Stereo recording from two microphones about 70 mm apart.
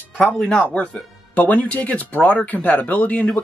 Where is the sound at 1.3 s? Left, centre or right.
Left.